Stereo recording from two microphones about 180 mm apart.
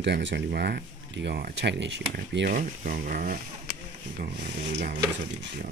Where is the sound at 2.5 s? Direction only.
50° right (ahead or behind).